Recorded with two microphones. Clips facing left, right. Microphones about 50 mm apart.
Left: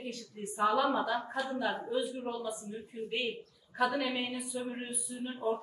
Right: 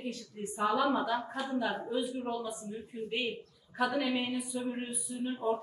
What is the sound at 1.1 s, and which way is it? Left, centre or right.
Speech, right.